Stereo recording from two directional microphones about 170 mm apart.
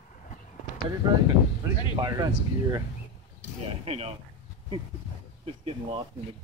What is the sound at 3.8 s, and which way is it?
Speech, 35° right (ahead or behind).